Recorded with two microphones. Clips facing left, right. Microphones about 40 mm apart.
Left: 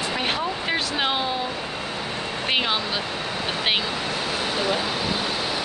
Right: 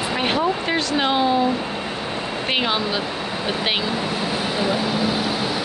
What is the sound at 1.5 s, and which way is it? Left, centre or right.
Vehicle, centre.